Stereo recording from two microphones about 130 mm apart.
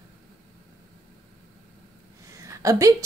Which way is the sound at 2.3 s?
25° right (ahead or behind).